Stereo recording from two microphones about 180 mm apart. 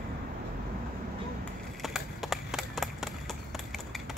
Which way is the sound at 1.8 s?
Centre (ahead or behind).